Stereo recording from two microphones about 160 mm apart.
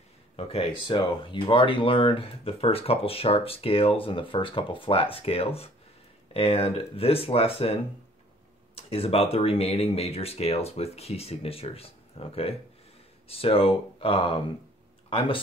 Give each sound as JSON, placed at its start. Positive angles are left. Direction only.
{"t": 0.4, "sound": "speech", "side_deg": 35}